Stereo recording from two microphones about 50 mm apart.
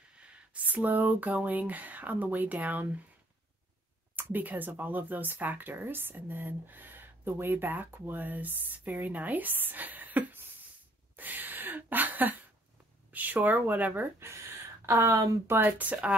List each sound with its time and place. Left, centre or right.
0.2 s speech: right
4.1 s speech: right
11.1 s a sound: right
13.1 s speech: right
14.2 s speech: right
15.5 s speech: right